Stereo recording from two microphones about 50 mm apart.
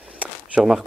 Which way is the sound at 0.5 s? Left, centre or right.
Centre.